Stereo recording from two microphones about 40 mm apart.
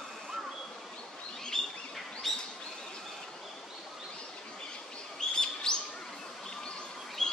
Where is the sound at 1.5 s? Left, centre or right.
Centre.